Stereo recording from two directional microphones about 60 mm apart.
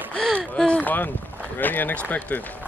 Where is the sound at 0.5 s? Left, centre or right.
Centre.